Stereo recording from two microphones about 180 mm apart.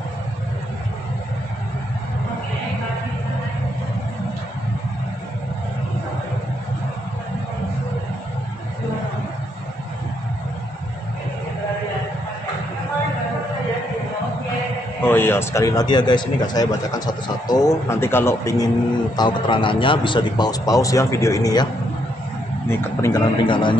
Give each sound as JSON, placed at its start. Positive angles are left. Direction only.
{"t": 15.0, "sound": "a man's voice", "side_deg": 10}
{"t": 22.7, "sound": "a man's voice", "side_deg": 15}